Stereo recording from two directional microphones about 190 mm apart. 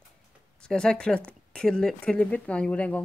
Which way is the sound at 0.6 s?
5° left (ahead or behind).